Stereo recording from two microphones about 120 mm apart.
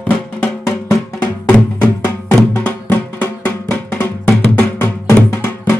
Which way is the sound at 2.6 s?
15° left (ahead or behind).